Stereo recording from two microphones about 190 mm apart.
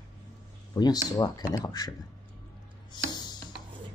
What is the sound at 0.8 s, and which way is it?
Speech, 20° left (ahead or behind).